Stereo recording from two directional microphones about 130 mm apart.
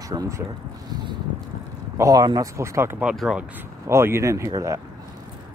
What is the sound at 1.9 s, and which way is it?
Speech, 25° right (ahead or behind).